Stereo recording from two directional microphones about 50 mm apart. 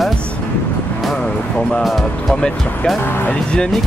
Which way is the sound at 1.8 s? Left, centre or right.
Centre.